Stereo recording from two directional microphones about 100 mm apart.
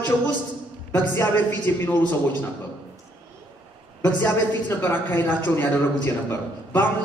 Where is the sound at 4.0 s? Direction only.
20° left (ahead or behind).